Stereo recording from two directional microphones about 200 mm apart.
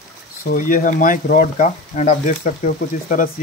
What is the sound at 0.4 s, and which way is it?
Speech, 45° left (ahead or behind).